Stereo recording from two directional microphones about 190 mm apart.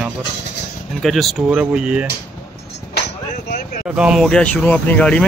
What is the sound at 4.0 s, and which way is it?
Speech, 5° right (ahead or behind).